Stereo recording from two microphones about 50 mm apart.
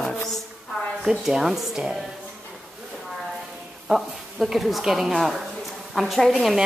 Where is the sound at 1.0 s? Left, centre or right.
Centre.